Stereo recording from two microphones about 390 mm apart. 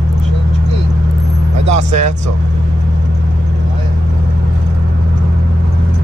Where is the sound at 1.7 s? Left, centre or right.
Right.